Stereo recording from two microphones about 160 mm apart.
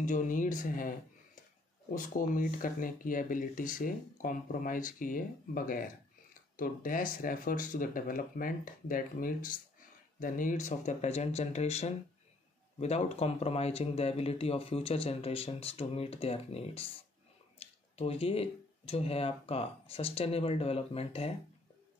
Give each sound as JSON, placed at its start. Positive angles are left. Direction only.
{"t": 0.0, "sound": "speech", "side_deg": 50}